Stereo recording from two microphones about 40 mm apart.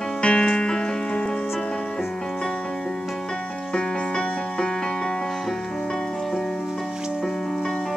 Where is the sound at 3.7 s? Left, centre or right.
Left.